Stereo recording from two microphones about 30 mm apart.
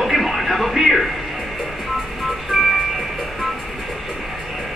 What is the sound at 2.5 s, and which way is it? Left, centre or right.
Music, centre.